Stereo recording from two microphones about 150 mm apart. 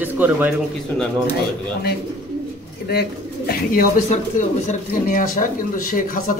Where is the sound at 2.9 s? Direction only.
90° left.